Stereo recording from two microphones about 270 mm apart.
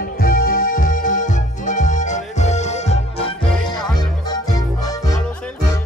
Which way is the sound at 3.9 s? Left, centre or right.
Centre.